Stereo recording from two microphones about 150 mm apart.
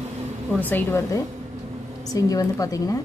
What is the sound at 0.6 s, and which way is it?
A woman's voice, 15° left (ahead or behind).